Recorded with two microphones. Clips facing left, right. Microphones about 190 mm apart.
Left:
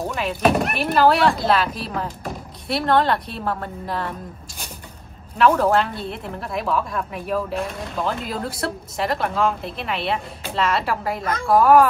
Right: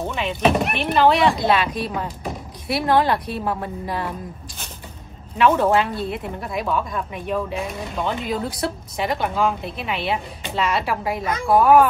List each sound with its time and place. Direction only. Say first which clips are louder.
0.0 s a woman's voice: even; centre (ahead or behind)
5.4 s a woman's voice: even; centre (ahead or behind)